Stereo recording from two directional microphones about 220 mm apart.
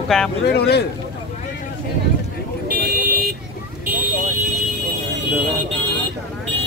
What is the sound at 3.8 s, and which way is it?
Vehicle, 40° right (ahead or behind).